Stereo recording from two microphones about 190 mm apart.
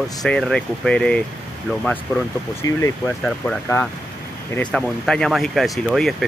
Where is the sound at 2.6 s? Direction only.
20° left (ahead or behind).